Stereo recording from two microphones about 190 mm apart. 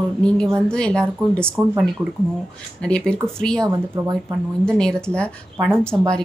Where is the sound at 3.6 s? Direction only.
20° right (ahead or behind).